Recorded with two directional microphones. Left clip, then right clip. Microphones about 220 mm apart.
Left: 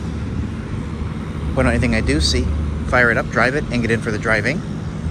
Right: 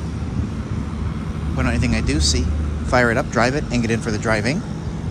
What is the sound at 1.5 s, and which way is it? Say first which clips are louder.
Speech: left 5 dB; 10° right (ahead or behind).